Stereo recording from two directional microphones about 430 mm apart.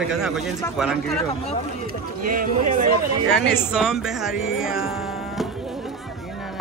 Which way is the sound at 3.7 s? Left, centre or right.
Centre.